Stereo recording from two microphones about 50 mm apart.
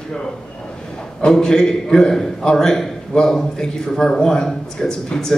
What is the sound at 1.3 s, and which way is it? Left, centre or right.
Speech, centre.